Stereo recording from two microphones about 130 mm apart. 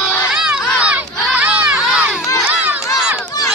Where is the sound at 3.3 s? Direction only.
30° left (ahead or behind).